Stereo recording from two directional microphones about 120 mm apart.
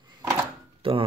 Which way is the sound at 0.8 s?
50° right (ahead or behind).